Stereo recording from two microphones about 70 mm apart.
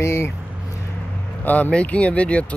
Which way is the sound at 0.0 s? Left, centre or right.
Left.